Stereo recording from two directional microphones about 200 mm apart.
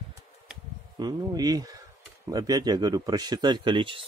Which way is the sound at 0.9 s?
20° right (ahead or behind).